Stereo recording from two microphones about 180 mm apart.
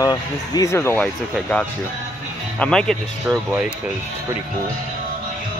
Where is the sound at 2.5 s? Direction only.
5° left (ahead or behind).